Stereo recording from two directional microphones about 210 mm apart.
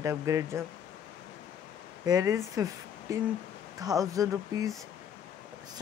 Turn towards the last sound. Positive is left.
turn(degrees=-15)  # may be behind; listen again after turning